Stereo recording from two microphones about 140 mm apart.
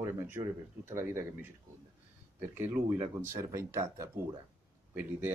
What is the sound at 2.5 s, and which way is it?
Speech, 15° right (ahead or behind).